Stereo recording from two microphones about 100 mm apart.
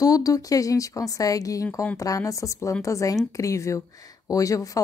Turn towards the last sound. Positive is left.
turn(degrees=35)  # may be behind; listen again after turning